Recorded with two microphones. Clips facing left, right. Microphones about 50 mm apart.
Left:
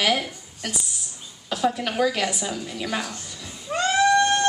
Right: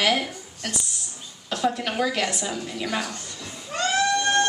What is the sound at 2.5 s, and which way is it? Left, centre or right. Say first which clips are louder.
Speech: even; centre.